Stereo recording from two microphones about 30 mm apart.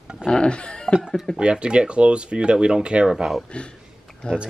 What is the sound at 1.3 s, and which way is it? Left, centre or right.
Speech, right.